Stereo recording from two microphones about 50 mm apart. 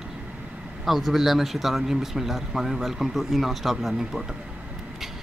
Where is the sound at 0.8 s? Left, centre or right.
Centre.